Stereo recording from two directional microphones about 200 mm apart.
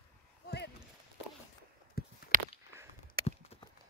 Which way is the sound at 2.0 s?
50° left (ahead or behind).